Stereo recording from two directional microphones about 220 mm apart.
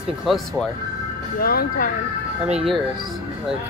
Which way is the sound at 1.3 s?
40° left (ahead or behind).